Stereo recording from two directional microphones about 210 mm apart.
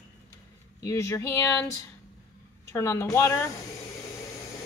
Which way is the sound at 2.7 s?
10° left (ahead or behind).